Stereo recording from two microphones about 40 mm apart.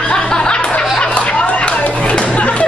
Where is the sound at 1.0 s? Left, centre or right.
Left.